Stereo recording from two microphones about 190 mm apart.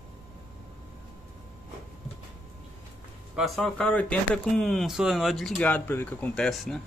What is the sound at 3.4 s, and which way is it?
Speech, centre (ahead or behind).